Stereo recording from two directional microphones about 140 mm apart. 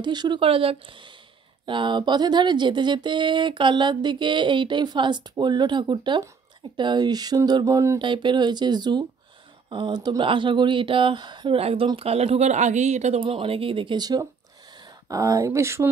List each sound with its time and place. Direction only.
0.0 s speech: 30° right (ahead or behind)
8.0 s speech: 35° right (ahead or behind); by 13.2 s 55° right (ahead or behind)
13.2 s speech: 40° right (ahead or behind); by 15.9 s 20° right (ahead or behind)